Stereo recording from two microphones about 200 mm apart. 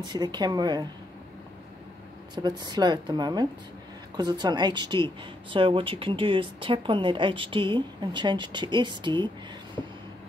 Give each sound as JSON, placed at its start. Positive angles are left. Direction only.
{"t": 0.0, "sound": "a woman's voice", "side_deg": -20}
{"t": 2.3, "sound": "a woman's voice", "side_deg": -20}